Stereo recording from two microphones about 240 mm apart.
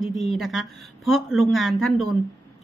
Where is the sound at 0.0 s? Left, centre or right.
Centre.